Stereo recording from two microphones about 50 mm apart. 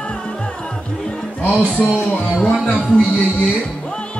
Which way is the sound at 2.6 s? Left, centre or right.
Left.